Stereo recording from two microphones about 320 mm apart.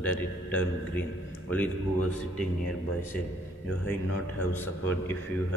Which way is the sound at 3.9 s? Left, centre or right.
Centre.